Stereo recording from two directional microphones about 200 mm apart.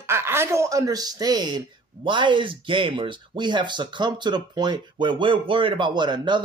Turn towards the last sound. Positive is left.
turn(degrees=-20)  # may be behind; listen again after turning